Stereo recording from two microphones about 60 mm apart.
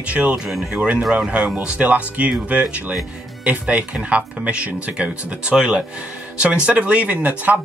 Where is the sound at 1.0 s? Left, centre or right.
Centre.